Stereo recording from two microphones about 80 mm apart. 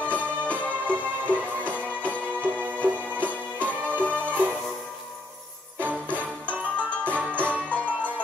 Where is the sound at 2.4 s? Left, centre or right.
Right.